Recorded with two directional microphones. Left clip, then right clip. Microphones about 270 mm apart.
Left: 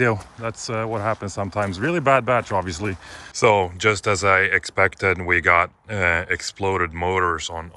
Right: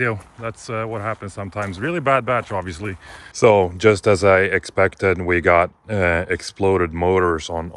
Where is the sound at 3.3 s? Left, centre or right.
Centre.